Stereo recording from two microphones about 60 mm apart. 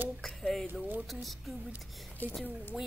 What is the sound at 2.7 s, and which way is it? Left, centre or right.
Speech, centre.